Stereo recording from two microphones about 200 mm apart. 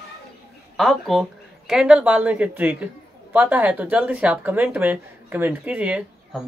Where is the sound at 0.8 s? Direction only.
Centre (ahead or behind).